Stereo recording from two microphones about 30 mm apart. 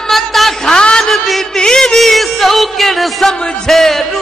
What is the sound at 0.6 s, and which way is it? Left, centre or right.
Music, left.